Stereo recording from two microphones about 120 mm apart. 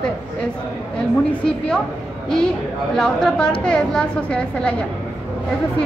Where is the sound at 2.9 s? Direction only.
5° left (ahead or behind).